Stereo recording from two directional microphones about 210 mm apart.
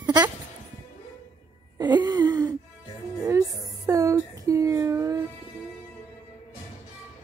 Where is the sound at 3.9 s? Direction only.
15° right (ahead or behind).